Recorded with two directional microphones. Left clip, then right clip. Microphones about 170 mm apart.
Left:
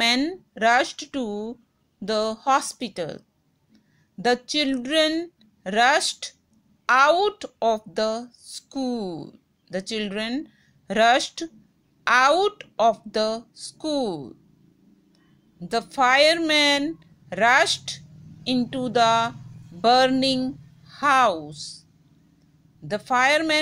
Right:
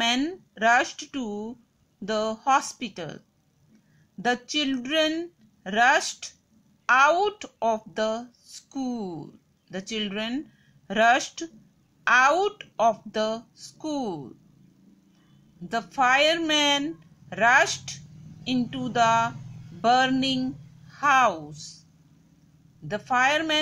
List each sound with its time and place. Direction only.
0.0 s speech: 30° left (ahead or behind)
15.7 s a woman's voice: 35° left (ahead or behind)
22.8 s speech: 30° left (ahead or behind)